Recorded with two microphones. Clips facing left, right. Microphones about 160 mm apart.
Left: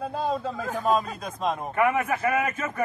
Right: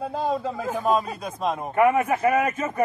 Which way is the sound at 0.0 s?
Centre (ahead or behind).